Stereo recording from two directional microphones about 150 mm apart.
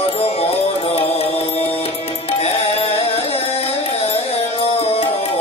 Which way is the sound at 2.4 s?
40° left (ahead or behind).